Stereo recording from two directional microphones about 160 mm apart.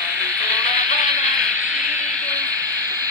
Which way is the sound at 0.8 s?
50° left (ahead or behind).